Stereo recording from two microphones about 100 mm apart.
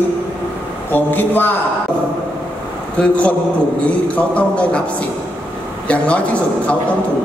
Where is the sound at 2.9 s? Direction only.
10° left (ahead or behind).